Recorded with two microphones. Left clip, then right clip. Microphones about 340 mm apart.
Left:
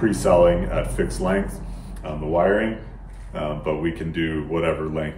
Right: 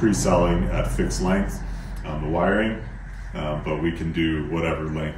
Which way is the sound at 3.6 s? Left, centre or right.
Centre.